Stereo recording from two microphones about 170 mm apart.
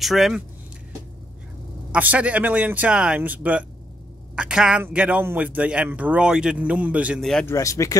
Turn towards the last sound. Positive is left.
turn(degrees=20)  # may be behind; listen again after turning